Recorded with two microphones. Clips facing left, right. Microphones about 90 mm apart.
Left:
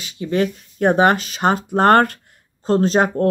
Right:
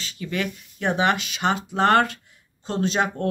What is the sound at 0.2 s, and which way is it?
Speech, 35° left (ahead or behind).